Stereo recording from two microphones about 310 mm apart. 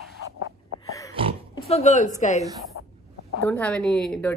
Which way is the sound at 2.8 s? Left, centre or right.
Left.